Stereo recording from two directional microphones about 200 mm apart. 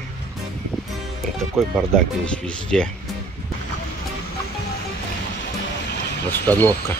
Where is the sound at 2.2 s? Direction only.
5° left (ahead or behind).